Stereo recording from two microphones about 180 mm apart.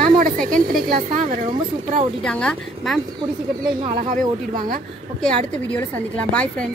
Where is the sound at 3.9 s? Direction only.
50° right (ahead or behind).